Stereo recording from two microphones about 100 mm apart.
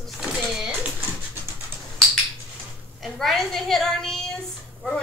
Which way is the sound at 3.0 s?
Centre (ahead or behind).